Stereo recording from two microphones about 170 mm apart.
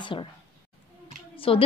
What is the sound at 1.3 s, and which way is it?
Speech, 30° left (ahead or behind).